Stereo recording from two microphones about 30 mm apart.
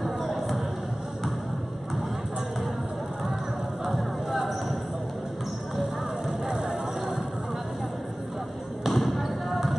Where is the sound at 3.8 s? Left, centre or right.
Centre.